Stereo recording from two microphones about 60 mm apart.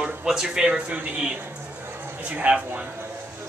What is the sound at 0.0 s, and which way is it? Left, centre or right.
Speech, centre.